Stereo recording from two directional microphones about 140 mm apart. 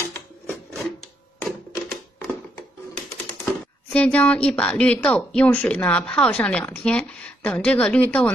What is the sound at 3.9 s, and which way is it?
Speech, 10° left (ahead or behind).